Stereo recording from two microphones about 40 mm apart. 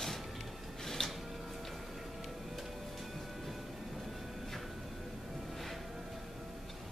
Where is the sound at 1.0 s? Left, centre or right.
Centre.